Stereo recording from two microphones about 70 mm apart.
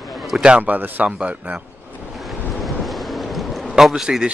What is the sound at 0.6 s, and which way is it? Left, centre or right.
Speech, right.